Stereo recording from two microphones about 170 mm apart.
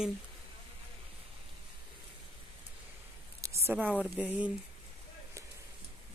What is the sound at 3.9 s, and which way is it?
Speech, centre (ahead or behind).